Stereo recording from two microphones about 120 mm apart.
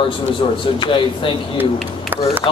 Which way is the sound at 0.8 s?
45° left (ahead or behind).